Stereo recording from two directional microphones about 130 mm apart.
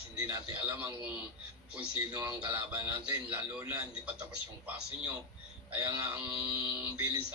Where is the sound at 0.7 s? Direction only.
15° right (ahead or behind).